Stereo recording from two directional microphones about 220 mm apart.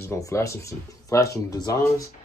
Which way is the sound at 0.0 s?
15° left (ahead or behind).